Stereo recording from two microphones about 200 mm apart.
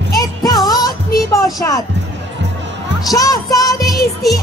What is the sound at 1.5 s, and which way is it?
Speech, 15° left (ahead or behind).